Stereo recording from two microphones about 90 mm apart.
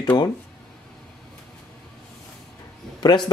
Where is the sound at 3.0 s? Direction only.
55° left (ahead or behind).